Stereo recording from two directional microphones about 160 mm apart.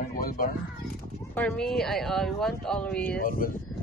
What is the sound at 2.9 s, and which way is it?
Speech, 70° left (ahead or behind).